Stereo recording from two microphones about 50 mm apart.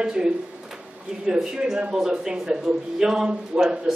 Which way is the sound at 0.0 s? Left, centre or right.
Centre.